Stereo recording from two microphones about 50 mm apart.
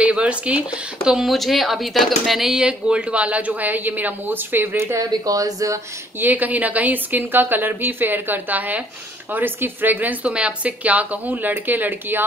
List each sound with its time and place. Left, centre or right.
0.0 s speech: right
1.3 s speech: centre
2.6 s speech: right
6.2 s speech: right